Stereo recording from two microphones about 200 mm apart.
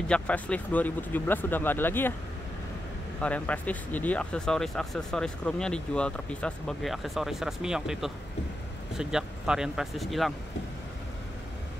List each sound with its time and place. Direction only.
0.1 s speech: 5° left (ahead or behind)
3.2 s speech: 5° left (ahead or behind)